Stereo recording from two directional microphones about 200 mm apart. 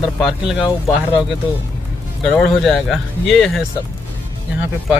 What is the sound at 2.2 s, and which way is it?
Speech, centre (ahead or behind).